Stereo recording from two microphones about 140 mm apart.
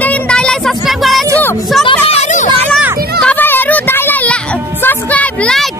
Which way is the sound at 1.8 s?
45° left (ahead or behind).